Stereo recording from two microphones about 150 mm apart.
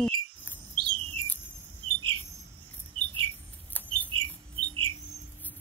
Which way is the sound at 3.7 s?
10° left (ahead or behind).